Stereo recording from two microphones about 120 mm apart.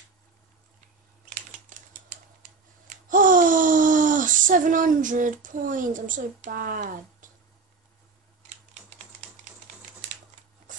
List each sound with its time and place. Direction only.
1.3 s typing: 80° right
3.1 s speech: 90° right